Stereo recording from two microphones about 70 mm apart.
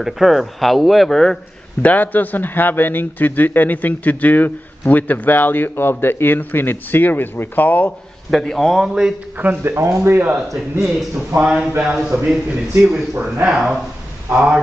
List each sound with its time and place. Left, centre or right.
0.0 s a man's voice: centre
1.8 s speech: left
8.3 s a man's voice: centre
9.6 s speech: right
10.5 s a man's voice: centre